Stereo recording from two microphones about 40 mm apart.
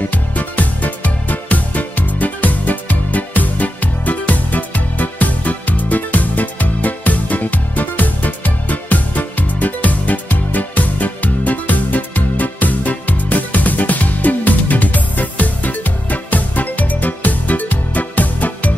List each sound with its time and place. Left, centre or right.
0.1 s music: left